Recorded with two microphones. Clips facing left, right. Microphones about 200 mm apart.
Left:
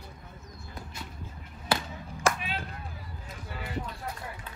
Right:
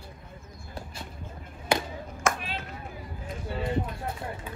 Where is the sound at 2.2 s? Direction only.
35° left (ahead or behind).